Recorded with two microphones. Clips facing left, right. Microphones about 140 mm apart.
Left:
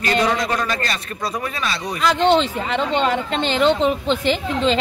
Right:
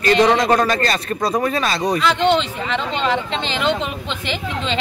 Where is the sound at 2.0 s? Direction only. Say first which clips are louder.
Left 3 dB; 40° left (ahead or behind).